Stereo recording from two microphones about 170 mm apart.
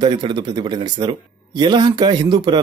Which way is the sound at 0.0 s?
30° right (ahead or behind).